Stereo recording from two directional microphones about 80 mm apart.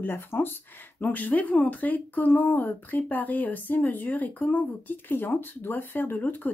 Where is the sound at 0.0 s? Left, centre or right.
Left.